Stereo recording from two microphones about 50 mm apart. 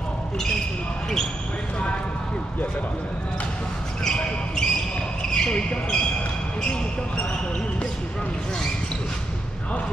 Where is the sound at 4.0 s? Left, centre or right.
Centre.